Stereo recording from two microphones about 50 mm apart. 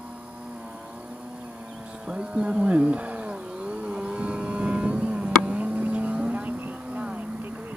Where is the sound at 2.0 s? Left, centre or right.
Right.